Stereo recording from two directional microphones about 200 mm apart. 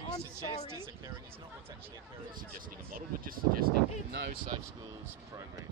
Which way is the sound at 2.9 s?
45° right (ahead or behind).